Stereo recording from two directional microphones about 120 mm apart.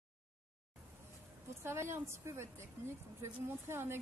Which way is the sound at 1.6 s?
20° right (ahead or behind).